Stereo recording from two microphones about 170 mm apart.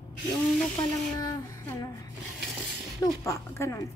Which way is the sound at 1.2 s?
20° left (ahead or behind).